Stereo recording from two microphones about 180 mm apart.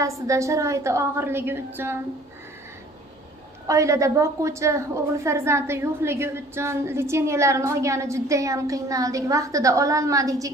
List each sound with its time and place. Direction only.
0.0 s a woman's voice: 15° right (ahead or behind)
3.6 s a woman's voice: 15° right (ahead or behind)